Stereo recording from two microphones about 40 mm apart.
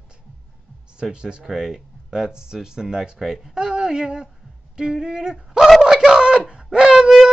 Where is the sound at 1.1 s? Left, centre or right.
Right.